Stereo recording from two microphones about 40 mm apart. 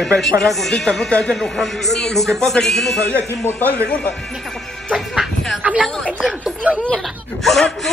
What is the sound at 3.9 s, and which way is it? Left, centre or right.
Speech, left.